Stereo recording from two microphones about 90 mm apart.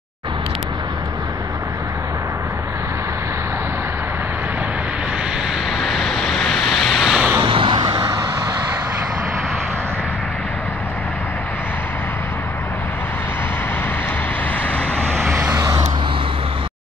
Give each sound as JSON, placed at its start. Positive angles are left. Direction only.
{"t": 5.8, "sound": "vehicle", "side_deg": 0}
{"t": 7.4, "sound": "vehicle", "side_deg": -75}
{"t": 15.5, "sound": "vehicle", "side_deg": -40}